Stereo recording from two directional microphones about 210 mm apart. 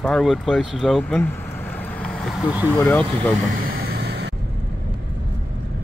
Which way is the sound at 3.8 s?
50° right (ahead or behind).